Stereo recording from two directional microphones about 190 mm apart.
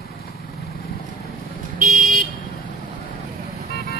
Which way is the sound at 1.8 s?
45° right (ahead or behind).